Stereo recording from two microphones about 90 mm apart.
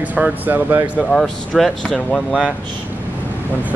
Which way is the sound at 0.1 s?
20° right (ahead or behind).